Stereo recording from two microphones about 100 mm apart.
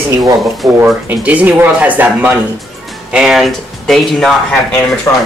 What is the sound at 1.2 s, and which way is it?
Speech, 15° right (ahead or behind).